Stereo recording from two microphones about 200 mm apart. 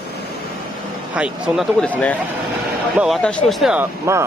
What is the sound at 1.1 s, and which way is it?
Speech, 5° right (ahead or behind).